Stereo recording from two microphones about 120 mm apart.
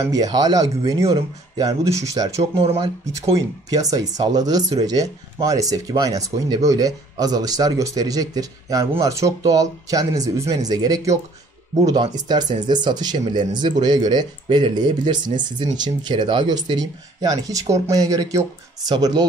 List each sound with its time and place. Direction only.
0.1 s speech: 30° right (ahead or behind)